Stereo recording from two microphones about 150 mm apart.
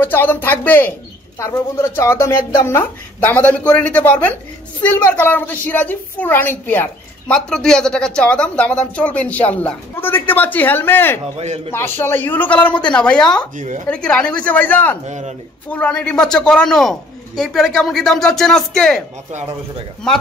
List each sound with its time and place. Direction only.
0.0 s a woman's voice: 15° left (ahead or behind)
11.3 s a man's voice: 45° right (ahead or behind)
11.7 s a woman's voice: 15° left (ahead or behind)
13.6 s speech: 60° right (ahead or behind)
13.8 s a woman's voice: 5° left (ahead or behind)
15.0 s a man's voice: 50° right (ahead or behind)
15.7 s speech: 10° left (ahead or behind)
20.1 s speech: 5° left (ahead or behind)